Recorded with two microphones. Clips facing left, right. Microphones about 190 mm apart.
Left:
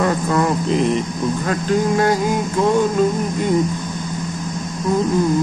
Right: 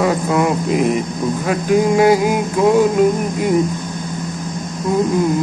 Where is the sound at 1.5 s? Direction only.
10° right (ahead or behind).